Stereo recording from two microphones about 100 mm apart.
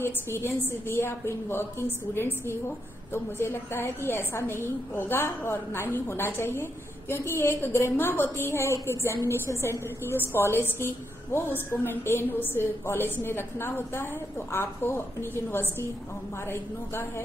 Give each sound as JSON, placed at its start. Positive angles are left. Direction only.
{"t": 0.0, "sound": "a woman's voice", "side_deg": 25}